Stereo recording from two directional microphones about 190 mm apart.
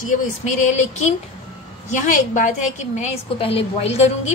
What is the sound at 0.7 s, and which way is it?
A woman's voice, 40° left (ahead or behind).